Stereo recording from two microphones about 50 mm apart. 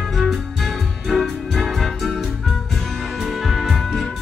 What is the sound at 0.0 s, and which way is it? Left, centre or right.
Music, centre.